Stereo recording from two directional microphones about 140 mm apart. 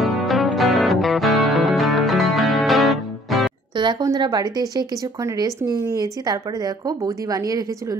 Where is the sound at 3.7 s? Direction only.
35° right (ahead or behind).